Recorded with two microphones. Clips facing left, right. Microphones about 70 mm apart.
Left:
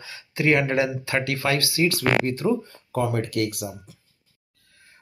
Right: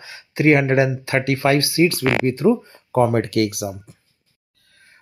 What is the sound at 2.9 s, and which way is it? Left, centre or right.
Speech, right.